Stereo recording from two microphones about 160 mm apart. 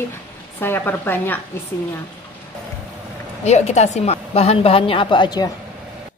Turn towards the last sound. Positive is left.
turn(degrees=30)  # may be behind; listen again after turning